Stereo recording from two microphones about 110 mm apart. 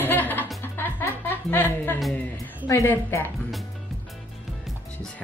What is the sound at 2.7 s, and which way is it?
Speech, 25° left (ahead or behind).